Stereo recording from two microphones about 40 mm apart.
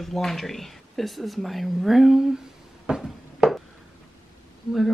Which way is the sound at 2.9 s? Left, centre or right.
Right.